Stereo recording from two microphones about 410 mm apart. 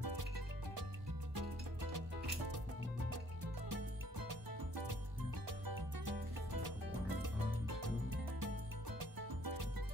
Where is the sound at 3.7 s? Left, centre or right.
Right.